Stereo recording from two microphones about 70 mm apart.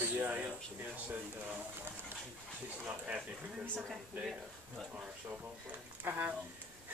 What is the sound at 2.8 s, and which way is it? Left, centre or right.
Speech, centre.